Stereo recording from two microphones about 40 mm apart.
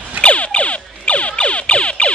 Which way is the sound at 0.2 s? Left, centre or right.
Left.